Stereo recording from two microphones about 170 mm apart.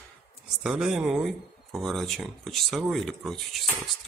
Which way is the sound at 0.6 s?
5° right (ahead or behind).